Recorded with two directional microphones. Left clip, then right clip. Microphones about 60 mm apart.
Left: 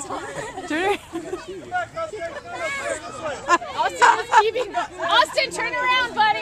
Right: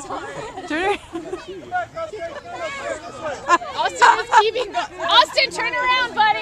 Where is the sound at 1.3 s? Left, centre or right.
Right.